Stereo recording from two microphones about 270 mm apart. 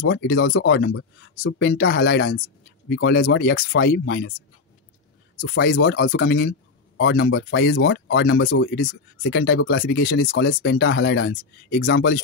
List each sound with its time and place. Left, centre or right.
0.0 s speech: left
5.4 s speech: left